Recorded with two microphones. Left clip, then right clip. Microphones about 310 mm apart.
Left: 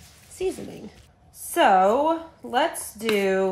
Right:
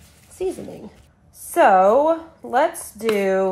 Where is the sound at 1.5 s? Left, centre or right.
Centre.